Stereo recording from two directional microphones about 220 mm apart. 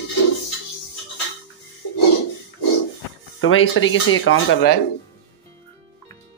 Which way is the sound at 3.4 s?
65° left (ahead or behind).